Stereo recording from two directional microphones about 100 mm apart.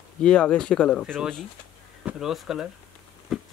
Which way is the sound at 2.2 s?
5° right (ahead or behind).